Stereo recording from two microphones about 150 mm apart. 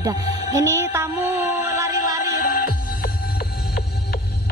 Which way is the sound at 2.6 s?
70° left (ahead or behind).